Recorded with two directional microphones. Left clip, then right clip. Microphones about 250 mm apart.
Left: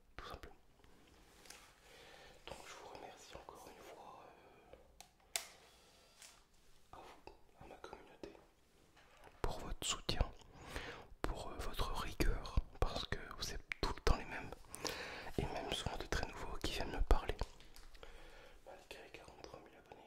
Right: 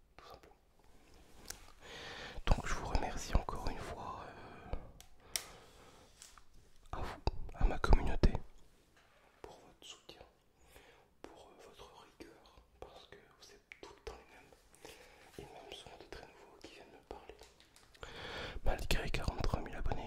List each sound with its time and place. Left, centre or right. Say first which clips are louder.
0.1 s whispering: left 4 dB; centre
1.5 s a sound: right 7 dB; right
2.2 s whispering: right 14 dB; right
6.9 s whispering: right 13 dB; right
9.4 s whispering: left 10 dB; left
9.8 s whispering: left 13 dB; left
15.5 s whispering: left 8 dB; left
18.2 s whispering: right 15 dB; right